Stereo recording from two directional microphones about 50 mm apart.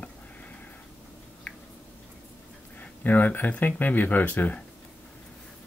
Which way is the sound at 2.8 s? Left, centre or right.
Left.